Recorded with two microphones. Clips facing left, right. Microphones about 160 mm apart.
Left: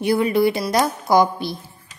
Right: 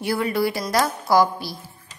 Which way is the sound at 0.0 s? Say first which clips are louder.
Left 5 dB; 20° left (ahead or behind).